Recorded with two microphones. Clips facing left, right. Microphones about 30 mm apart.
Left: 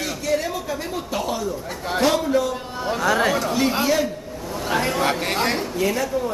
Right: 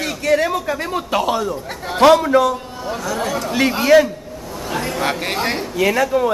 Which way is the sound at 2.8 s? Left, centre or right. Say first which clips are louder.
Left 4 dB; left.